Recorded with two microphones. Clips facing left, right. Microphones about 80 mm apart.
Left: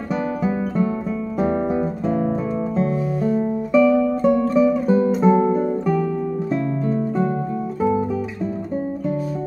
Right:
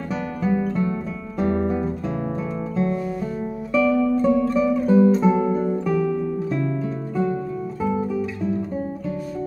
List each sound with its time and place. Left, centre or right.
0.1 s music: centre
1.4 s guitar: centre
4.2 s music: centre